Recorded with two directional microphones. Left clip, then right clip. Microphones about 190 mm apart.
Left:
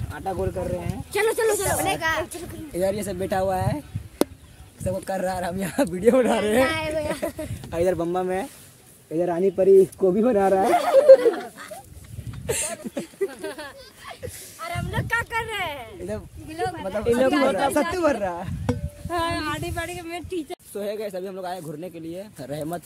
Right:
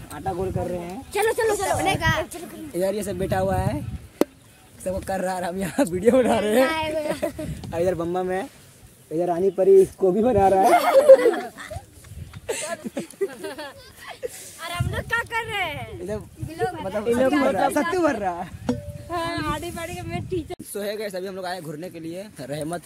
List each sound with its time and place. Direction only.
0.1 s speech: centre (ahead or behind)
1.1 s speech: 20° left (ahead or behind)
1.8 s speech: centre (ahead or behind)
2.2 s speech: 15° left (ahead or behind)
2.7 s speech: 5° right (ahead or behind)
5.4 s speech: centre (ahead or behind)
7.7 s speech: 25° left (ahead or behind)
10.7 s a sound: 45° right (ahead or behind)
12.5 s a sound: 20° left (ahead or behind)
14.2 s speech: 5° left (ahead or behind)
16.7 s speech: centre (ahead or behind)
19.0 s speech: 60° left (ahead or behind)
20.7 s speech: 5° right (ahead or behind)